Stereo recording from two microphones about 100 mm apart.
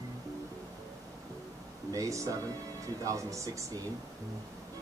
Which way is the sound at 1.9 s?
30° right (ahead or behind).